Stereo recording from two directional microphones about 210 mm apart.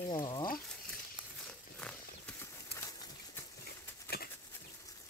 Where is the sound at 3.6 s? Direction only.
50° left (ahead or behind).